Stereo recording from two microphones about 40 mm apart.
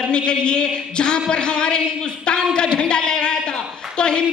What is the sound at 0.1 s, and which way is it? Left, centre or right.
A woman's voice, left.